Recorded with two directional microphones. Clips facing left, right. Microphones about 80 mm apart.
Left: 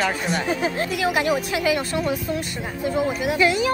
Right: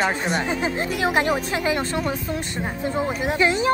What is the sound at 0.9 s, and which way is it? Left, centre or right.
Speech, right.